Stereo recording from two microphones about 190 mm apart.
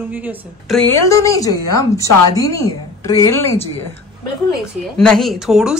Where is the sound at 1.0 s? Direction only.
15° left (ahead or behind).